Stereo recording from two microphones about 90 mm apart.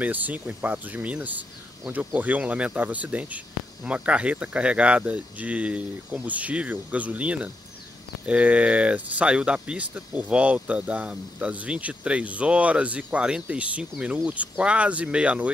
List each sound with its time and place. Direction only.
0.0 s speech: 20° right (ahead or behind)